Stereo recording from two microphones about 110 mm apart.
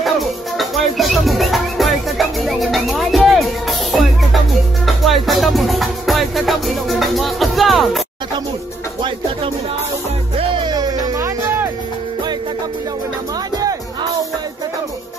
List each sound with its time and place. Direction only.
0.6 s music: centre (ahead or behind)
10.3 s music: 50° right (ahead or behind); by 11.6 s 30° right (ahead or behind)
13.6 s music: 35° right (ahead or behind)